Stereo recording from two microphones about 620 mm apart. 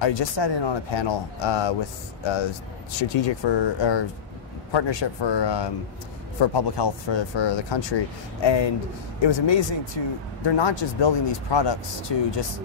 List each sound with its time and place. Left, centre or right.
0.0 s speech: left